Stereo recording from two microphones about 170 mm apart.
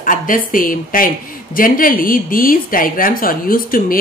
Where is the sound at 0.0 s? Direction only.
55° left (ahead or behind).